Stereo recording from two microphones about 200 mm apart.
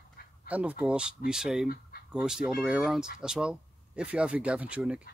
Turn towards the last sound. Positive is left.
turn(degrees=-5)  # may be behind; listen again after turning